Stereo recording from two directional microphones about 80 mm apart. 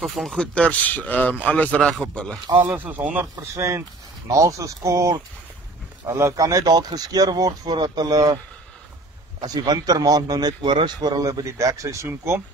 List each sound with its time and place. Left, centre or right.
0.2 s speech: centre
0.6 s speech: centre
1.8 s speech: centre
2.6 s speech: right
3.5 s speech: right
6.1 s speech: right
9.4 s speech: right
10.6 s speech: right
11.0 s speech: right